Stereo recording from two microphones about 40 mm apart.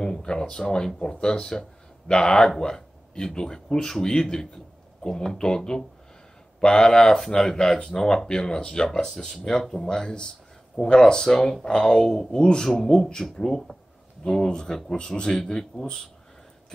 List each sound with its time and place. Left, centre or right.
0.0 s speech: left